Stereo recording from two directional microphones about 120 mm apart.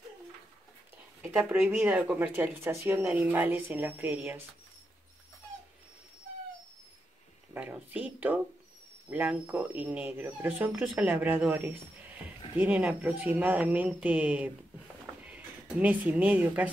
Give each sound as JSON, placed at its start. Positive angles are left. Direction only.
{"t": 1.3, "sound": "speech", "side_deg": -10}
{"t": 7.5, "sound": "speech", "side_deg": -15}